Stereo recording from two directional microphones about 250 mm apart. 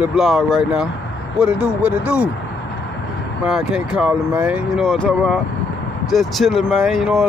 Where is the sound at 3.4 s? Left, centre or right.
Centre.